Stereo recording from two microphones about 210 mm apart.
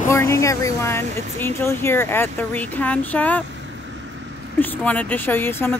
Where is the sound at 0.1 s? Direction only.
15° left (ahead or behind).